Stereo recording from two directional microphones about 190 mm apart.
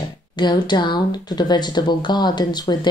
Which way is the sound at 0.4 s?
25° left (ahead or behind).